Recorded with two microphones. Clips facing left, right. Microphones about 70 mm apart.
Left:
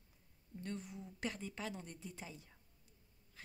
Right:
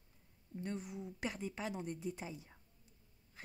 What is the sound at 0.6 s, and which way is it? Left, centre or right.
Speech, centre.